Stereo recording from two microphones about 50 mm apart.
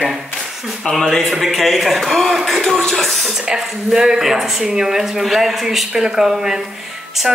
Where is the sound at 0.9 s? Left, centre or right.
Centre.